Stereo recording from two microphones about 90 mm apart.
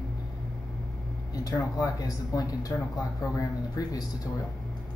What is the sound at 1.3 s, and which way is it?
Speech, 40° left (ahead or behind).